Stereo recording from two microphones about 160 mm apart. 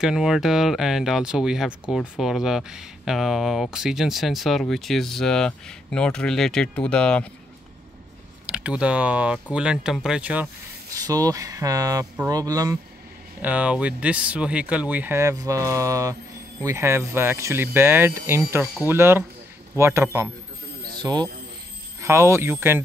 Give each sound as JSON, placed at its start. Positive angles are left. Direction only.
{"t": 0.0, "sound": "speech", "side_deg": -5}
{"t": 8.5, "sound": "speech", "side_deg": -5}
{"t": 11.1, "sound": "speech", "side_deg": -20}
{"t": 13.4, "sound": "speech", "side_deg": -10}